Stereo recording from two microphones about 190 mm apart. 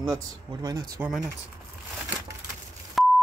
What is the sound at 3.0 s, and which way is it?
Beep, centre (ahead or behind).